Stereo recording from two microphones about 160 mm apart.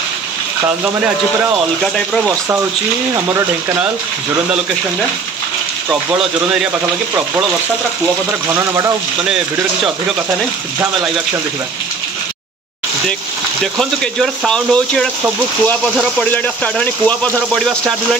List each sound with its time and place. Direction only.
1.8 s speech: centre (ahead or behind)
13.7 s speech: centre (ahead or behind)
16.3 s speech: 10° left (ahead or behind)